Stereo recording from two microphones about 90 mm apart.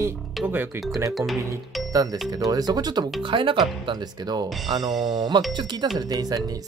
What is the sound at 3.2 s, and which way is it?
Speech, 65° right (ahead or behind).